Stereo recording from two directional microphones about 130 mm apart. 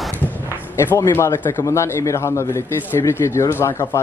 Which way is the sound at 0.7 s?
25° left (ahead or behind).